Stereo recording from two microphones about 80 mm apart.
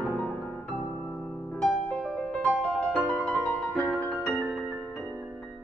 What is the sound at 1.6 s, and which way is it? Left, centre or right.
Music, centre.